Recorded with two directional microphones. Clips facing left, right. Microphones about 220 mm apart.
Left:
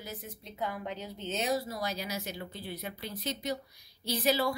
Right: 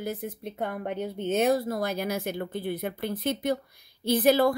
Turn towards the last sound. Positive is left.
turn(degrees=-55)  # may be behind; listen again after turning